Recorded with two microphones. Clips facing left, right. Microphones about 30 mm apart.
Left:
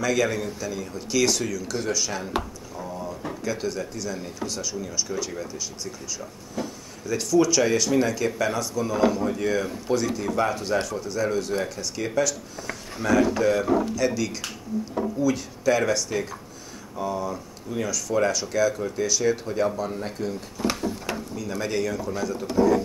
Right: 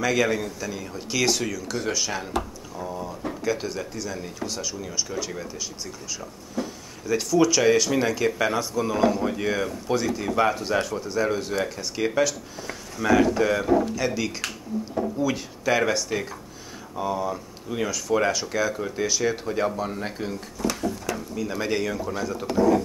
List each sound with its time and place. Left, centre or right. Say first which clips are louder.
0.0 s speech: right 1 dB; centre